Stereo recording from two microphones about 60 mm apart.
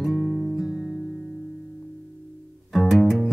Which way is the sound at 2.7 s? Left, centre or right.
Centre.